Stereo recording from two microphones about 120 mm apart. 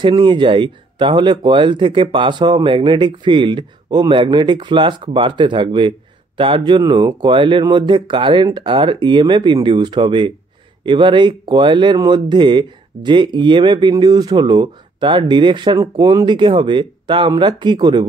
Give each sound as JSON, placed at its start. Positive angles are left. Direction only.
{"t": 0.0, "sound": "speech", "side_deg": -45}